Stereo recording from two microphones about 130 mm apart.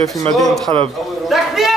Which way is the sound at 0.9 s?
Centre (ahead or behind).